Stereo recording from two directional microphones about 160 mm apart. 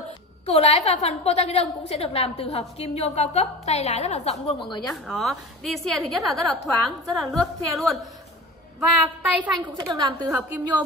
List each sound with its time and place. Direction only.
0.5 s a woman's voice: 40° left (ahead or behind)
4.8 s a woman's voice: centre (ahead or behind)
9.8 s a woman's voice: 25° right (ahead or behind)